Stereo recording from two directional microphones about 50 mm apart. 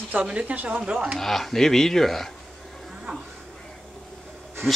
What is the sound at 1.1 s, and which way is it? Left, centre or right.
Speech, centre.